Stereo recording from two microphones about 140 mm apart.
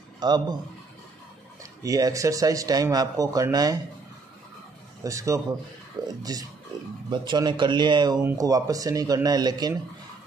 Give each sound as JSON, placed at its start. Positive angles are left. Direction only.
{"t": 0.2, "sound": "speech", "side_deg": -30}
{"t": 1.6, "sound": "speech", "side_deg": -25}
{"t": 5.0, "sound": "speech", "side_deg": -20}